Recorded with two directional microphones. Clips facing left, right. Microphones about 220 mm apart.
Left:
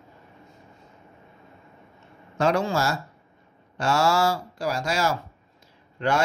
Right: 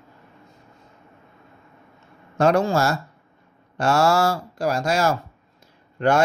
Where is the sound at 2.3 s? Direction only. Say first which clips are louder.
Right 4 dB; 50° right (ahead or behind).